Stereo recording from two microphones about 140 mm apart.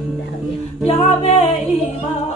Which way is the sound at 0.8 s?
45° left (ahead or behind).